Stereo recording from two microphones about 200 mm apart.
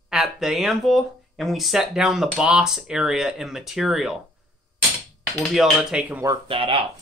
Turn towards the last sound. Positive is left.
turn(degrees=-25)  # may be behind; listen again after turning